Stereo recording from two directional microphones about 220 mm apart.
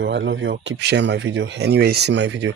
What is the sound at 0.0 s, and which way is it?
Speech, 55° right (ahead or behind).